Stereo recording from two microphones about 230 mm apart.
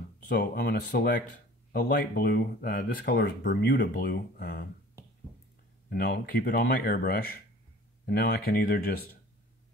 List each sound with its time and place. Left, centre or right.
0.3 s speech: left
5.9 s speech: left